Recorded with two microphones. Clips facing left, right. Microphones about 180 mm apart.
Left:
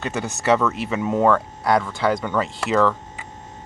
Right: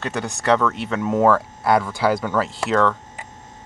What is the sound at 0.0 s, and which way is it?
Speech, centre (ahead or behind).